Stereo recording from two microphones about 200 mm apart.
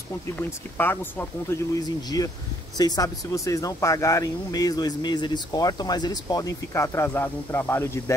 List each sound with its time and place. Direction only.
0.4 s speech: 10° left (ahead or behind)